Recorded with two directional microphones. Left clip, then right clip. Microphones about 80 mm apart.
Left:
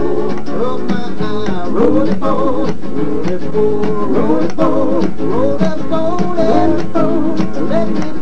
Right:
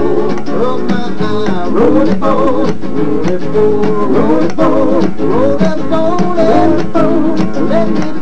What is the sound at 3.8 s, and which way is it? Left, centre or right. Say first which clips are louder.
Music: right 4 dB; left.